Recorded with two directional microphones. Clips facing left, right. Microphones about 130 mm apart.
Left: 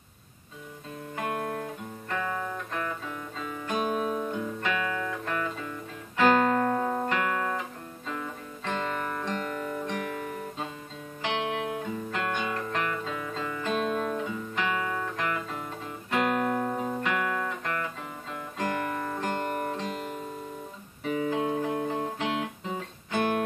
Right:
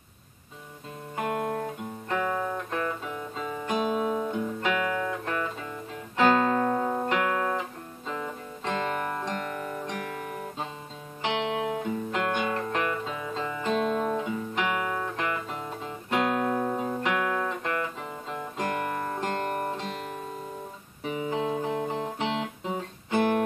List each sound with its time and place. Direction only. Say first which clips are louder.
1.1 s guitar: right 3 dB; 30° right (ahead or behind)
2.0 s guitar: right 4 dB; 15° right (ahead or behind)
3.1 s music: right 3 dB; 20° right (ahead or behind)
6.1 s music: even; 15° right (ahead or behind)
11.2 s music: right 2 dB; 20° right (ahead or behind)
16.1 s guitar: right 1 dB; 15° right (ahead or behind)
18.3 s music: even; 25° right (ahead or behind)
21.0 s music: left 1 dB; 20° right (ahead or behind)